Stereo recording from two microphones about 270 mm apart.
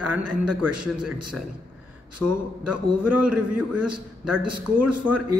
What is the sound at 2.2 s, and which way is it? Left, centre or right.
A man's voice, right.